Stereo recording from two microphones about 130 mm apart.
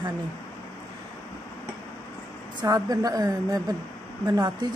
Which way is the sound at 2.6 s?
30° right (ahead or behind).